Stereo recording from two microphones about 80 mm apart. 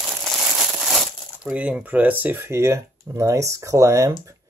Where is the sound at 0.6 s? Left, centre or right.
Centre.